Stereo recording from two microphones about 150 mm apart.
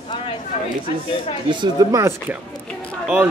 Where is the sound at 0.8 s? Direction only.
40° left (ahead or behind).